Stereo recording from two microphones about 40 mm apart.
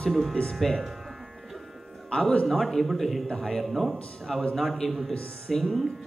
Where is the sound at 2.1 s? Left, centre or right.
Left.